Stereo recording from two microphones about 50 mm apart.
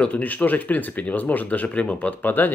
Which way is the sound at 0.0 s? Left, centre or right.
Left.